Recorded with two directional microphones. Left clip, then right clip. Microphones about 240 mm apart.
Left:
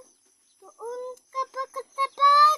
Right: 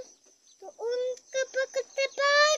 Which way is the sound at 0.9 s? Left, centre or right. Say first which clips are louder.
Right 5 dB; centre.